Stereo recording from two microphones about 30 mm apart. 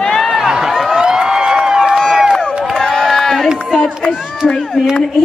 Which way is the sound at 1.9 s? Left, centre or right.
Centre.